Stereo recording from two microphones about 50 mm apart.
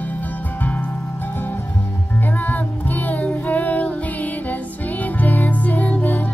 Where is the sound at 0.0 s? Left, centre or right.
Left.